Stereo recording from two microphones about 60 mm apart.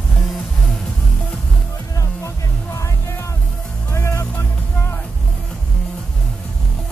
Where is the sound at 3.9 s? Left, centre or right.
Left.